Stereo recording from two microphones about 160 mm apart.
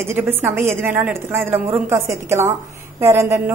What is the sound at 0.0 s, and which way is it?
A woman's voice, 15° right (ahead or behind).